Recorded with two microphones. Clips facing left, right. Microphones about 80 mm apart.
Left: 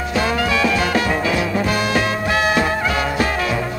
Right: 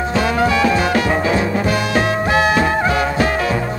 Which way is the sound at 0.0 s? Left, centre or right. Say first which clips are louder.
Right 3 dB; right.